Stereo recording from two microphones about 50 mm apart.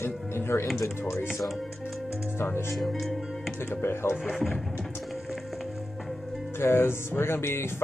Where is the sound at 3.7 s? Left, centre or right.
Left.